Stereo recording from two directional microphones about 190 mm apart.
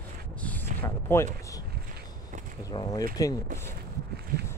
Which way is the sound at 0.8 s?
10° left (ahead or behind).